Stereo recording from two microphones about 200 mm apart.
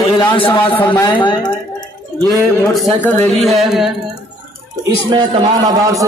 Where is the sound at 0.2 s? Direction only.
25° left (ahead or behind).